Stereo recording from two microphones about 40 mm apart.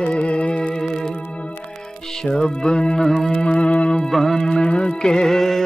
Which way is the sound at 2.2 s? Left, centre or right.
Left.